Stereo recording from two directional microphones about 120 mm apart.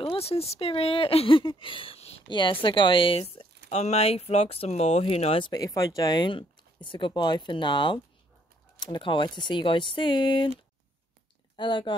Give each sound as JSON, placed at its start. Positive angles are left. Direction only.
{"t": 0.0, "sound": "speech", "side_deg": 50}
{"t": 2.2, "sound": "speech", "side_deg": 40}
{"t": 5.4, "sound": "speech", "side_deg": 30}
{"t": 11.5, "sound": "speech", "side_deg": 40}